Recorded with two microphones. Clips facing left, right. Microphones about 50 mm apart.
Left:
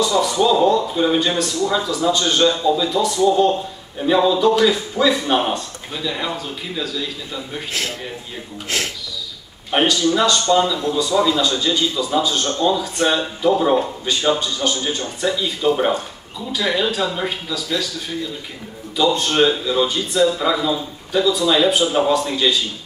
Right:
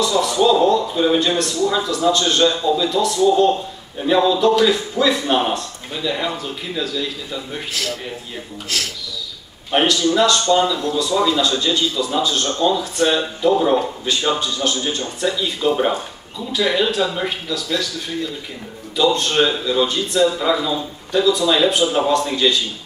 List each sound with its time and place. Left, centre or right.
0.0 s a sound: centre
2.0 s speech: centre
3.2 s speech: centre
4.0 s speech: centre
7.7 s speech: left
9.7 s speech: centre
10.8 s speech: centre
11.1 s speech: centre
18.9 s speech: centre